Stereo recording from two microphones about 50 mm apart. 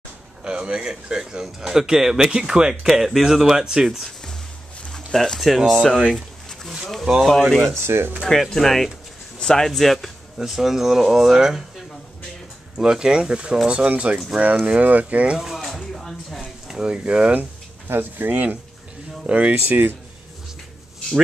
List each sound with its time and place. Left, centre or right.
0.4 s speech: centre
2.7 s speech: centre
4.9 s a sound: centre
5.4 s speech: centre
5.7 s speech: centre
6.1 s a sound: centre
6.8 s speech: centre
7.7 s speech: right
8.3 s speech: centre
12.7 s speech: centre; by 15.3 s right
15.3 s a sound: centre
16.8 s speech: right
17.8 s speech: right
19.2 s speech: right